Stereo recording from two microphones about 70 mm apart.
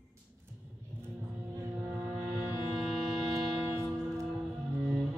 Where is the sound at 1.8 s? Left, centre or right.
Right.